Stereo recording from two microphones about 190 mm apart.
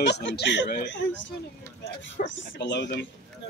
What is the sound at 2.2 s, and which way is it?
Speech, 65° left (ahead or behind).